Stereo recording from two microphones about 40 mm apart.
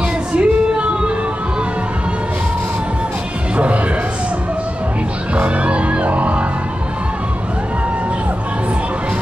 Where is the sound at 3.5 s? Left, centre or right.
Right.